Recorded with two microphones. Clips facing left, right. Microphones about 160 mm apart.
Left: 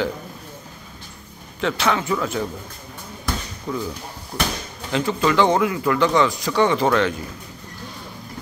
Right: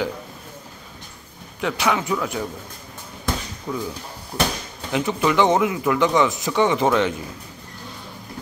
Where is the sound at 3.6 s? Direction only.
5° right (ahead or behind).